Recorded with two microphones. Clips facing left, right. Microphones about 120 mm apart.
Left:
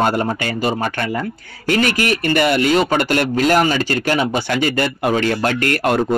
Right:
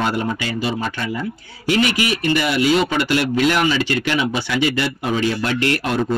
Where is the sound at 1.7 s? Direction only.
50° left (ahead or behind).